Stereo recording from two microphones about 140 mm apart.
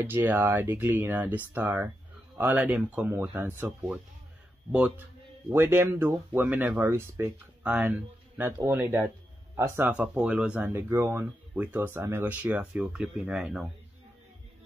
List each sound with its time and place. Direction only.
0.0 s speech: 15° right (ahead or behind)
4.7 s speech: 10° right (ahead or behind)
10.7 s speech: 20° right (ahead or behind)